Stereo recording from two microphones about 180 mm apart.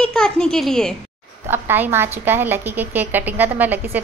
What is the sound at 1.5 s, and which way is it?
A woman's voice, 10° right (ahead or behind).